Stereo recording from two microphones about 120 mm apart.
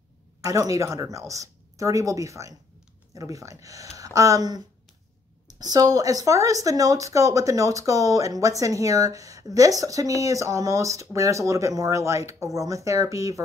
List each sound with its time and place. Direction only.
0.4 s speech: 30° right (ahead or behind)